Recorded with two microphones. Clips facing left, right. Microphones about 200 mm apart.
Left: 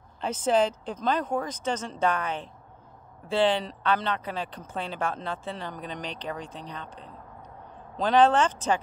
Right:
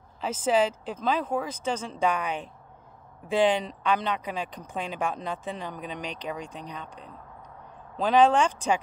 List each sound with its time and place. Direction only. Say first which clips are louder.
0.2 s speech: even; 5° right (ahead or behind)
6.4 s speech: right 1 dB; 35° left (ahead or behind)
6.7 s speech: even; 10° right (ahead or behind)
8.0 s speech: even; 10° right (ahead or behind)